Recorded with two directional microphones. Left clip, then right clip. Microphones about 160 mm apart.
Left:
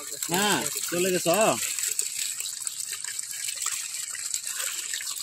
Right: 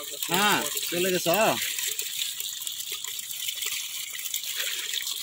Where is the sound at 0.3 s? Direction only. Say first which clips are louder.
Right 2 dB; 25° left (ahead or behind).